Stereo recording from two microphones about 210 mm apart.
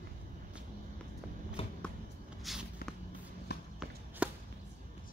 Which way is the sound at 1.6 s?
25° left (ahead or behind).